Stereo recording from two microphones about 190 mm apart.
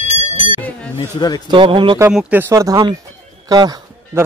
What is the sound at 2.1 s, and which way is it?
Speech, 10° right (ahead or behind).